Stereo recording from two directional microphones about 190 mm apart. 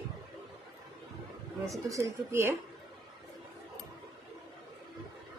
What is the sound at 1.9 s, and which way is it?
Speech, 15° right (ahead or behind).